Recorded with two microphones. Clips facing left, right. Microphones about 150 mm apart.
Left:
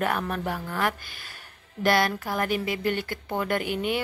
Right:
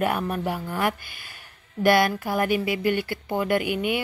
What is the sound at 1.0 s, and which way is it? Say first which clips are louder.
Speech: even; 45° left (ahead or behind).